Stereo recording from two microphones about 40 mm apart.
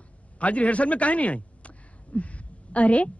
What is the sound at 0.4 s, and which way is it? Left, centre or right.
A man's voice, left.